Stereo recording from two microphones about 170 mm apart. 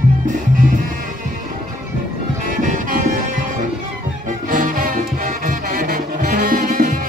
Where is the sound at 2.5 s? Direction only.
50° right (ahead or behind).